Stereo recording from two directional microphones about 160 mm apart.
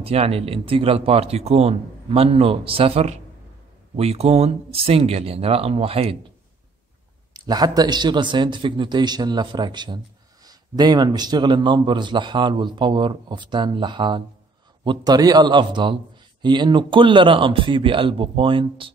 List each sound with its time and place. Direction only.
0.0 s speech: 40° right (ahead or behind)
7.3 s a man's voice: 25° right (ahead or behind)